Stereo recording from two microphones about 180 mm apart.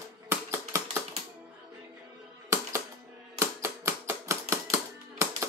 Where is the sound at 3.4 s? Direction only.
15° right (ahead or behind).